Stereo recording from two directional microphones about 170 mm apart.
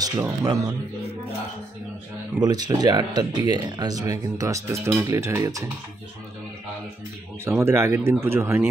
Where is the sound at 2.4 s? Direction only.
25° right (ahead or behind).